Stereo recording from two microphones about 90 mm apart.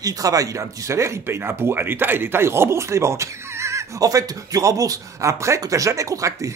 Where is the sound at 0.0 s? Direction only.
40° right (ahead or behind).